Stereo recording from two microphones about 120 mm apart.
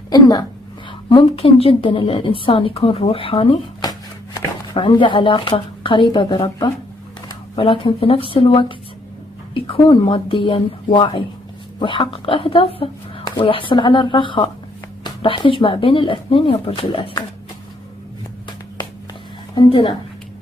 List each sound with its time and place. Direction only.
0.1 s a woman's voice: 35° left (ahead or behind)
1.0 s a woman's voice: 50° left (ahead or behind)
3.8 s a sound: 40° left (ahead or behind)
7.5 s a woman's voice: 50° left (ahead or behind)
19.5 s a woman's voice: 40° left (ahead or behind)